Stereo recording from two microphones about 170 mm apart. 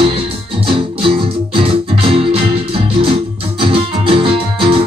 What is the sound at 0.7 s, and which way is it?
Music, 30° right (ahead or behind).